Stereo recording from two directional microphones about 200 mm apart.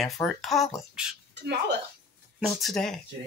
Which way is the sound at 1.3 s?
60° right (ahead or behind).